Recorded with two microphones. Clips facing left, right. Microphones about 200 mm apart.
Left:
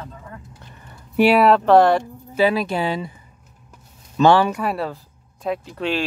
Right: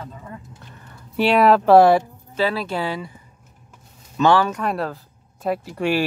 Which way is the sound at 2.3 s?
15° left (ahead or behind).